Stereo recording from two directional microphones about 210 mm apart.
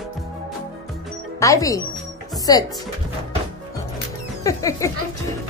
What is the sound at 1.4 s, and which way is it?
Music, 15° left (ahead or behind).